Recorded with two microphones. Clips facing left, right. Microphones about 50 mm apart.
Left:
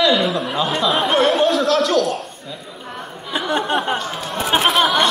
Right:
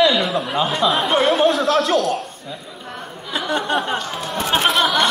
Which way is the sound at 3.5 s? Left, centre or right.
Left.